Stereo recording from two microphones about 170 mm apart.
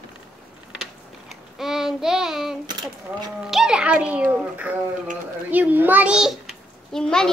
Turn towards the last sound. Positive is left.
turn(degrees=5)  # may be behind; listen again after turning